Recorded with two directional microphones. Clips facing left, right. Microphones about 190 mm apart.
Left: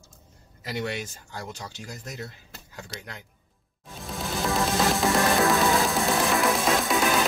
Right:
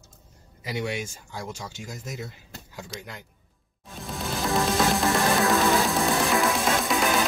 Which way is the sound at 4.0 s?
Centre (ahead or behind).